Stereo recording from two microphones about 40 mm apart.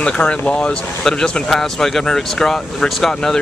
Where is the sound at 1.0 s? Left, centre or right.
Centre.